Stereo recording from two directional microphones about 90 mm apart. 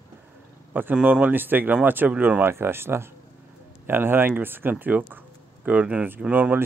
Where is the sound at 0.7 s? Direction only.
20° right (ahead or behind).